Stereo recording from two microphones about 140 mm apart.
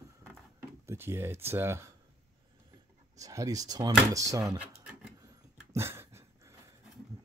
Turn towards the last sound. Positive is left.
turn(degrees=-25)  # may be behind; listen again after turning